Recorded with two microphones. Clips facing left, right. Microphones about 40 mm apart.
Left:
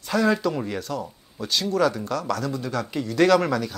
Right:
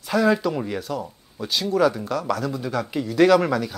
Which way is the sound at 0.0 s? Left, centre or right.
Centre.